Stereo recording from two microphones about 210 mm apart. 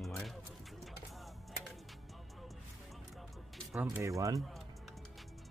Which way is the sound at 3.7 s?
5° right (ahead or behind).